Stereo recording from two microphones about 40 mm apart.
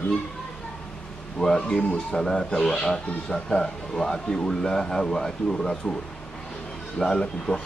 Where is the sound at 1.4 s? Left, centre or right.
Centre.